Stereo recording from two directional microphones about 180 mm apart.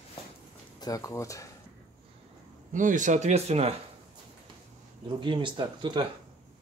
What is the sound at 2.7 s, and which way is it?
Speech, 45° right (ahead or behind).